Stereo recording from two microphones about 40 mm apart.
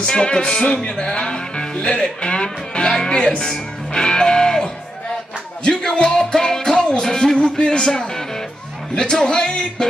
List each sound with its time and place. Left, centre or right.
0.0 s music: left
0.8 s speech: left
5.6 s music: centre
8.9 s speech: centre